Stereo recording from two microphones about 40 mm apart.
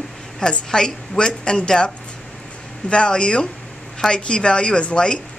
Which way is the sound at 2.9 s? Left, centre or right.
Left.